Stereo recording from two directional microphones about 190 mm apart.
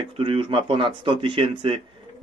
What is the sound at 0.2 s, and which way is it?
Speech, 30° right (ahead or behind).